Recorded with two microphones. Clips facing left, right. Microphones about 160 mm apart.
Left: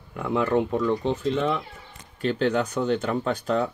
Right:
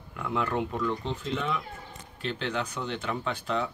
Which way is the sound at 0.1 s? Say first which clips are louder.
Left 7 dB; 45° left (ahead or behind).